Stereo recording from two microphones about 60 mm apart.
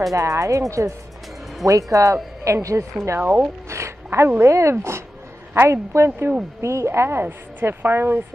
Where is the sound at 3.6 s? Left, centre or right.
Right.